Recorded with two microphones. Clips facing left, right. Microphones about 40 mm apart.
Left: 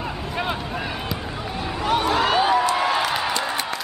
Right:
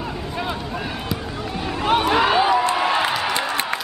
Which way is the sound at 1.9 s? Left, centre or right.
Right.